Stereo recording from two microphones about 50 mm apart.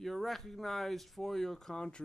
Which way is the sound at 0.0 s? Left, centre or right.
Centre.